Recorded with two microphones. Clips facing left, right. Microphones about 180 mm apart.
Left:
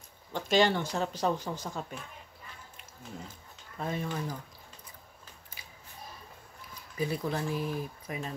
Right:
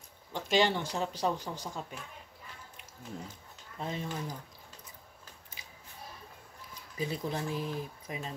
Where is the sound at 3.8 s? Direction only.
20° right (ahead or behind).